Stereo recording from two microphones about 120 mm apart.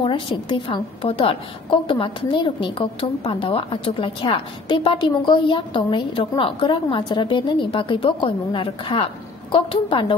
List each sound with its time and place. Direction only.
0.0 s a woman's voice: 45° left (ahead or behind)